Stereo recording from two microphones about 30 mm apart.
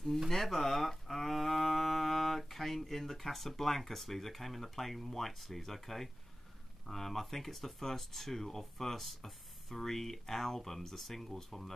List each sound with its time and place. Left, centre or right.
0.3 s speech: centre